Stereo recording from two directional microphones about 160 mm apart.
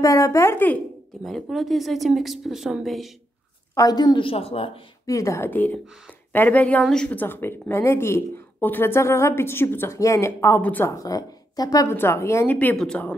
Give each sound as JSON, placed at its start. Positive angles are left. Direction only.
{"t": 0.0, "sound": "speech", "side_deg": 20}
{"t": 1.2, "sound": "speech", "side_deg": 0}
{"t": 3.7, "sound": "a woman's voice", "side_deg": 25}
{"t": 5.0, "sound": "a woman's voice", "side_deg": 20}